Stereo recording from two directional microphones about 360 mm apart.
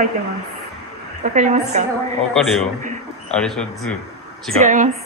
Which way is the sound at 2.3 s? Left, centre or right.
Centre.